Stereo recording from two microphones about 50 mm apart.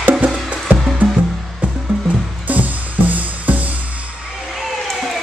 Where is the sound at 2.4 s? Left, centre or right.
Right.